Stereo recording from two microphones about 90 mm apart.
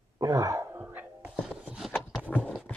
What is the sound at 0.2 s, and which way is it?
Throat clearing, 40° right (ahead or behind).